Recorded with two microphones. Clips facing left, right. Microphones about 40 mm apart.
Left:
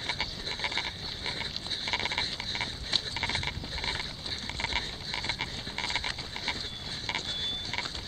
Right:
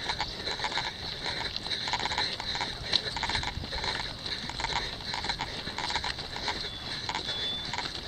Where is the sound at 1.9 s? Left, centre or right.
Centre.